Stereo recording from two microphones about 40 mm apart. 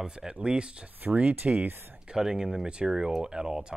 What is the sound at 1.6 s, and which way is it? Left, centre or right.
Speech, right.